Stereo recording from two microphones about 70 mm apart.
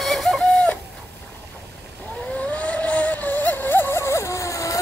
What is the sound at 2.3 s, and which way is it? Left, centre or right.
Vehicle, centre.